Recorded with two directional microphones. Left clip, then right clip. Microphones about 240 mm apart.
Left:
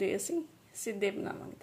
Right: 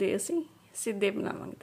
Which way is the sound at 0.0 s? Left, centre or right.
Centre.